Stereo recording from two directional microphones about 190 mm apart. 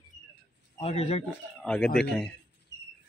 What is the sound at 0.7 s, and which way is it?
Speech, 35° left (ahead or behind).